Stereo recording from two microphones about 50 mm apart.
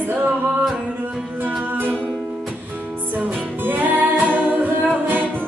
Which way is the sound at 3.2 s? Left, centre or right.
Right.